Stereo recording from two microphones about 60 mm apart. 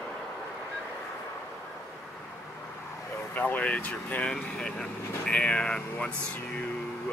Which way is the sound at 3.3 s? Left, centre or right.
Left.